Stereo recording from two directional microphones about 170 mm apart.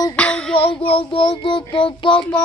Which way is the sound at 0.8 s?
35° left (ahead or behind).